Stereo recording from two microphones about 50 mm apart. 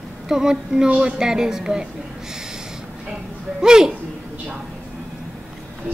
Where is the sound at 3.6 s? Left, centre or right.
Centre.